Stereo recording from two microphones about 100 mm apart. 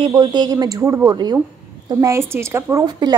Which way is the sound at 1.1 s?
45° right (ahead or behind).